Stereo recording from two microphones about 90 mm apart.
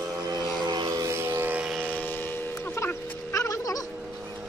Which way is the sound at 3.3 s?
40° left (ahead or behind).